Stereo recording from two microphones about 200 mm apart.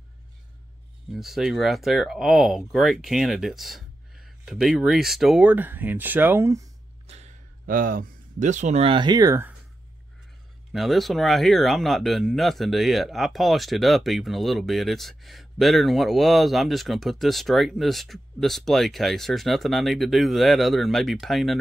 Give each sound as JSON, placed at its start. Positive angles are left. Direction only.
{"t": 1.1, "sound": "speech", "side_deg": 0}
{"t": 7.1, "sound": "speech", "side_deg": -35}
{"t": 10.7, "sound": "speech", "side_deg": 0}